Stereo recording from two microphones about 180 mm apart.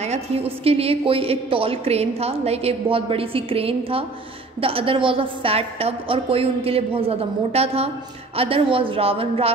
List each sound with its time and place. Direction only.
0.0 s a woman's voice: 35° right (ahead or behind)